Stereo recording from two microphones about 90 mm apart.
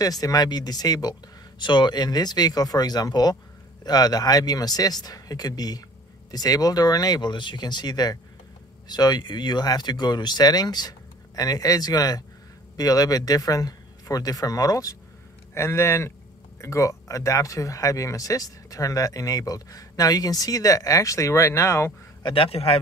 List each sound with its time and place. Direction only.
0.0 s speech: 40° left (ahead or behind)
1.6 s speech: 55° left (ahead or behind); by 21.9 s 30° left (ahead or behind)
22.2 s a man's voice: 85° left